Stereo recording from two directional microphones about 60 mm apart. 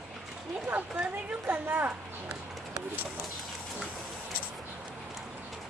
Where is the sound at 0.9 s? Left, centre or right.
Right.